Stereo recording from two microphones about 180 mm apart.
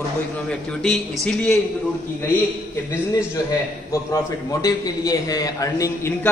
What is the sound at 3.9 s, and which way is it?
A man's voice, 15° left (ahead or behind).